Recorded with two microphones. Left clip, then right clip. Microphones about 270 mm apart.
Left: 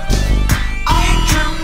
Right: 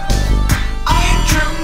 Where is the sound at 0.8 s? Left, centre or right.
Centre.